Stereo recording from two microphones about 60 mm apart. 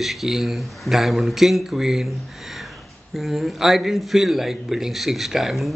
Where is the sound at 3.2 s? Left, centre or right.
Centre.